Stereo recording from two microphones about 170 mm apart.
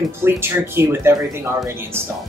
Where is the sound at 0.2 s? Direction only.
15° right (ahead or behind).